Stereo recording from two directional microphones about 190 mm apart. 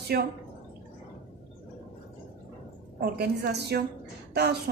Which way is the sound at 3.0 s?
60° right (ahead or behind).